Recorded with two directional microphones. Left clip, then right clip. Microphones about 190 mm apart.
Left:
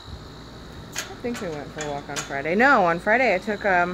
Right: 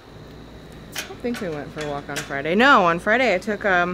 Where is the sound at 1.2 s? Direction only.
20° right (ahead or behind).